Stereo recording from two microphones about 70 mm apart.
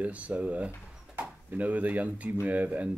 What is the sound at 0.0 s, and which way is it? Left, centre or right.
Speech, centre.